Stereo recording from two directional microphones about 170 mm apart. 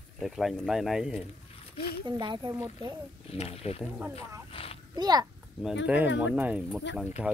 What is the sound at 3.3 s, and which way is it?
Speech, 35° left (ahead or behind).